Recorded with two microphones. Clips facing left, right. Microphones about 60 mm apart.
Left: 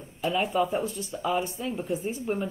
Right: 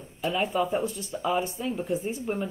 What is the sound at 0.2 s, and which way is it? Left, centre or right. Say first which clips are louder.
Speech: left 1 dB; centre.